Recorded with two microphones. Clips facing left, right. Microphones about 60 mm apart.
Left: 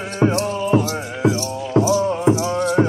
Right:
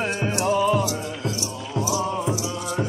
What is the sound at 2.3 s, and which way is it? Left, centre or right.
Music, left.